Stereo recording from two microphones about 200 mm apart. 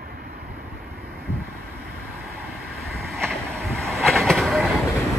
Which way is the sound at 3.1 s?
Centre (ahead or behind).